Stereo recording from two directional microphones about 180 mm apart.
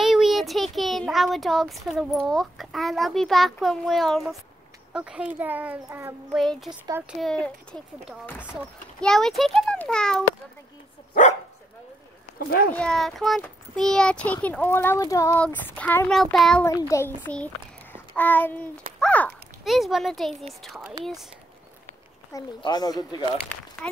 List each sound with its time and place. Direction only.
0.0 s a child's voice: centre (ahead or behind)
6.3 s a child's voice: centre (ahead or behind)
12.4 s speech: 55° left (ahead or behind)
12.7 s speech: 5° left (ahead or behind)
16.6 s speech: 15° left (ahead or behind)
17.9 s a sound: 10° left (ahead or behind)
18.9 s a child's voice: 5° left (ahead or behind)
22.3 s speech: 25° left (ahead or behind)
23.3 s speech: 5° left (ahead or behind)